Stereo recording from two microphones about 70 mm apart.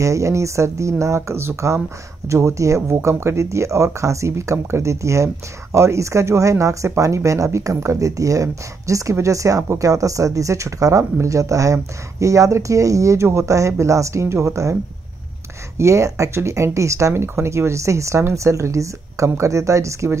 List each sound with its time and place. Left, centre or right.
0.0 s speech: right
15.8 s speech: right